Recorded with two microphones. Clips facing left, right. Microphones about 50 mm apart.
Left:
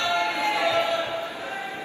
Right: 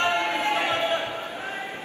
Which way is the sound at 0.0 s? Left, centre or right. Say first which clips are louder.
Even; right.